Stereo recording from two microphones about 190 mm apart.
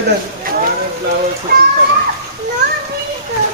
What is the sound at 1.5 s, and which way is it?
Speech, 55° right (ahead or behind).